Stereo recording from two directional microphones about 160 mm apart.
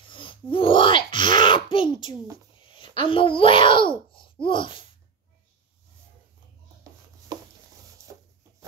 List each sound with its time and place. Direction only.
0.1 s sneeze: 30° left (ahead or behind)
2.7 s a child's voice: 30° left (ahead or behind)
8.1 s a sound: 15° right (ahead or behind)